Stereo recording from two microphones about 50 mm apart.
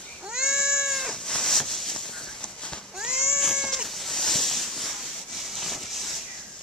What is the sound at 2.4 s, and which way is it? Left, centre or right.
Horse, centre.